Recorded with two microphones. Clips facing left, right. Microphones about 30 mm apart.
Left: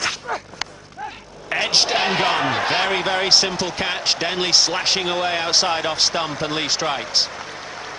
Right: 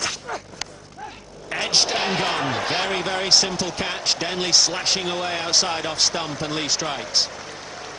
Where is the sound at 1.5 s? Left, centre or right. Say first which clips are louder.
Left 3 dB; centre.